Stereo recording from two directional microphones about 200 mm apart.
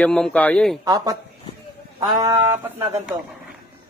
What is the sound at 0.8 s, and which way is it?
Speech, 20° right (ahead or behind).